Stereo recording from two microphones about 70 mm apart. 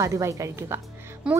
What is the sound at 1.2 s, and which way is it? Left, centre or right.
Speech, centre.